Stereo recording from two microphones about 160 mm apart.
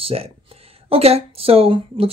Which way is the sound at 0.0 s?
35° right (ahead or behind).